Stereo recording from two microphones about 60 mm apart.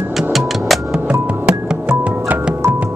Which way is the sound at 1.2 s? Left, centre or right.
Centre.